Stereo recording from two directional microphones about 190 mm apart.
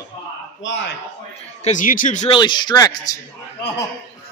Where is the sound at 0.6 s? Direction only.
70° left (ahead or behind).